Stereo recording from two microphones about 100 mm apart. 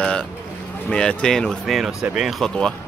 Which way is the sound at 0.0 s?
10° left (ahead or behind).